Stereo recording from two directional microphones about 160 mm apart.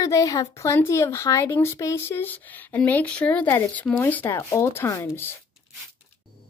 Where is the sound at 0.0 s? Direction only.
20° left (ahead or behind).